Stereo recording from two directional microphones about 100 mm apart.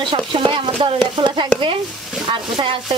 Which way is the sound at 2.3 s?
55° right (ahead or behind).